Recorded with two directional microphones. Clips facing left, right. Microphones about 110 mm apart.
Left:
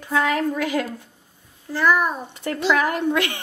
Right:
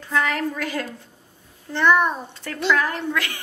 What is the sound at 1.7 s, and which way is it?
Speech, 5° left (ahead or behind).